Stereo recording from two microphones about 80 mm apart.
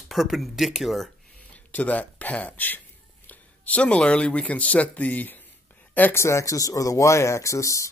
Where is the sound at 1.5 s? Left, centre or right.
Centre.